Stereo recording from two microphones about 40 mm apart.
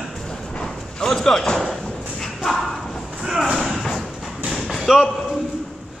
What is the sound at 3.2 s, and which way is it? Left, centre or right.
Thump, centre.